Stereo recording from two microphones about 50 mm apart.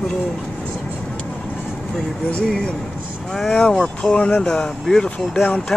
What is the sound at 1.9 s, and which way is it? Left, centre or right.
Speech, centre.